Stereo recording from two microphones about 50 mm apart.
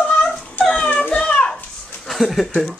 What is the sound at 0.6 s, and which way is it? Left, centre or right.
Dog, left.